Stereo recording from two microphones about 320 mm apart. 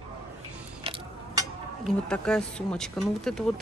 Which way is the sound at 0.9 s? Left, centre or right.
Centre.